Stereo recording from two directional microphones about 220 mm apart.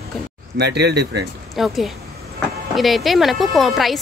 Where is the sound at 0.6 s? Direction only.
50° right (ahead or behind).